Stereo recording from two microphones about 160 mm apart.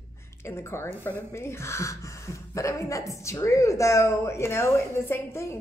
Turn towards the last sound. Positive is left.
turn(degrees=15)  # may be behind; listen again after turning